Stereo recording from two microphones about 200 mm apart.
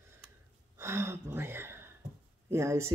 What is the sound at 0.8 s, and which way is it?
Speech, 15° right (ahead or behind).